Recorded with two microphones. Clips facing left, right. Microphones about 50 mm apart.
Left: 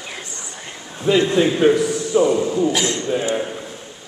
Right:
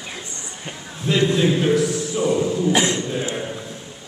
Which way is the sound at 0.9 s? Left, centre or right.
Centre.